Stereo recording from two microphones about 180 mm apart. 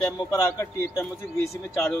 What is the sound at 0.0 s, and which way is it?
A man's voice, 15° left (ahead or behind).